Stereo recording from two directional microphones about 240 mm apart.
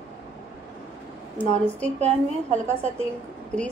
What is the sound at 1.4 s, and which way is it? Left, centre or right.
Speech, centre.